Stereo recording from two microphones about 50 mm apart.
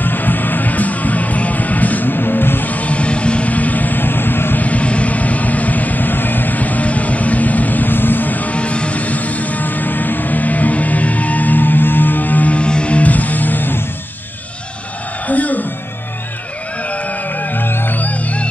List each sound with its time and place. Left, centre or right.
0.0 s music: left
4.6 s vehicle: left
15.2 s music: left
16.9 s music: left